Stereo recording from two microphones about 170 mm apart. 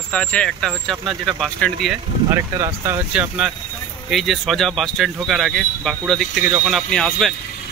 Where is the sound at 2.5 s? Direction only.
20° right (ahead or behind).